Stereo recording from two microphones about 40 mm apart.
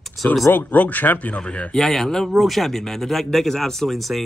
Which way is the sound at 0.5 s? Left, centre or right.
Left.